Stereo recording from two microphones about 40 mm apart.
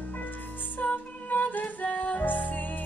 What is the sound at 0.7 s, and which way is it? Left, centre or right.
Music, left.